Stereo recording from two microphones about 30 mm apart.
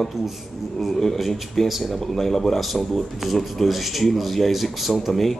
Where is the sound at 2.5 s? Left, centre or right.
Centre.